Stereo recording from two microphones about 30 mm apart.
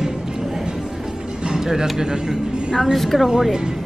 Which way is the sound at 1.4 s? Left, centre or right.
Centre.